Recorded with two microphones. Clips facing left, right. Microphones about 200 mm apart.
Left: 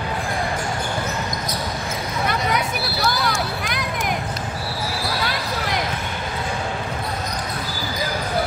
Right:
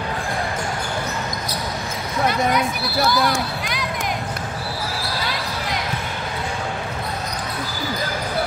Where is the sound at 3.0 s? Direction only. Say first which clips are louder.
Right 5 dB; 55° right (ahead or behind).